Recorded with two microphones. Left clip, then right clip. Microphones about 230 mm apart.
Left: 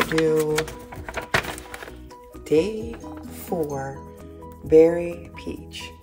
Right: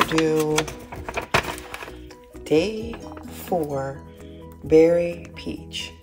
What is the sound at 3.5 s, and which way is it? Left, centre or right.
Speech, centre.